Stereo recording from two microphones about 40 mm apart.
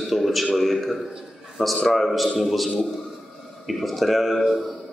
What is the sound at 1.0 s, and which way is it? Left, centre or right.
Speech, right.